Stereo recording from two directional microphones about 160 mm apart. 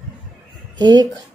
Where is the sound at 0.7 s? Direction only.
30° right (ahead or behind).